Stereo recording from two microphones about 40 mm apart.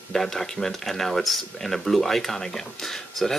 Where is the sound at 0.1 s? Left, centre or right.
Centre.